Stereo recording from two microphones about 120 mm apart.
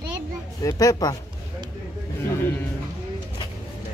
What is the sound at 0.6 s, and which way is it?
Speech, 30° left (ahead or behind).